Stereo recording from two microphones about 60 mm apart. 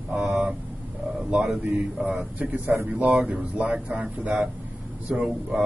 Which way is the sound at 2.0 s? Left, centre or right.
Right.